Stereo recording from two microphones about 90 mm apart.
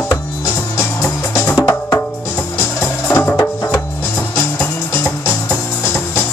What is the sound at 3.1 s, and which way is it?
Music, 25° left (ahead or behind).